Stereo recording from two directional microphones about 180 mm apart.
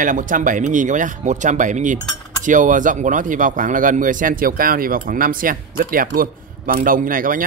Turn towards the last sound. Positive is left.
turn(degrees=-50)  # may be behind; listen again after turning